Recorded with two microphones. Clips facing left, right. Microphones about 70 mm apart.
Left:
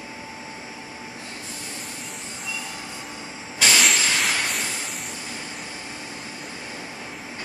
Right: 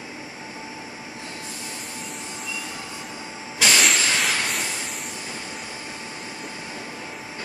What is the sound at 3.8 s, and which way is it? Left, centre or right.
Steam, centre.